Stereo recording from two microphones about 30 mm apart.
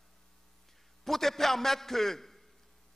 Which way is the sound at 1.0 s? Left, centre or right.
Centre.